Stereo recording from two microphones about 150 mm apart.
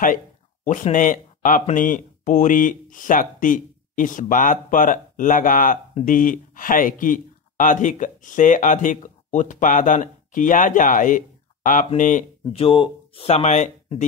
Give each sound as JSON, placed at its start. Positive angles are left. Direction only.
{"t": 0.9, "sound": "speech", "side_deg": 60}
{"t": 12.5, "sound": "speech", "side_deg": 35}